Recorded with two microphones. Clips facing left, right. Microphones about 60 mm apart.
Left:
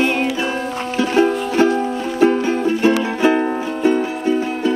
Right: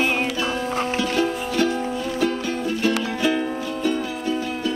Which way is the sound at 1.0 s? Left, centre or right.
Left.